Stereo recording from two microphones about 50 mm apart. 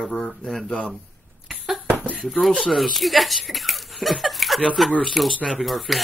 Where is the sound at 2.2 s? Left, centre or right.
Centre.